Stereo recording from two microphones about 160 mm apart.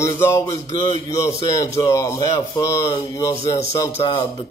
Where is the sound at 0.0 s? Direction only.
15° left (ahead or behind).